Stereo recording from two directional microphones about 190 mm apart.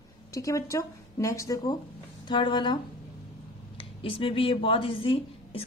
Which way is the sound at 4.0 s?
30° left (ahead or behind).